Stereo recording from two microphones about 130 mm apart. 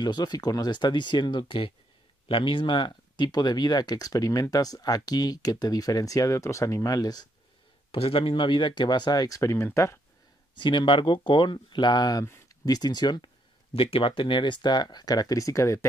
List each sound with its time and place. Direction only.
0.0 s speech: 35° left (ahead or behind)
7.9 s speech: 45° left (ahead or behind); by 9.9 s 20° left (ahead or behind)
10.6 s speech: 40° left (ahead or behind)
12.3 s a sound: 20° left (ahead or behind)
12.7 s speech: 30° left (ahead or behind)
13.7 s speech: 45° left (ahead or behind); by 15.9 s 20° left (ahead or behind)